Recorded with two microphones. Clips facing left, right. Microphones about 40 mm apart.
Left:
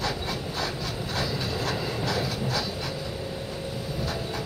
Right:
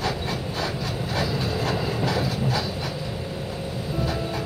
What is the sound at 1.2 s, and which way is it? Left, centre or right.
Train, centre.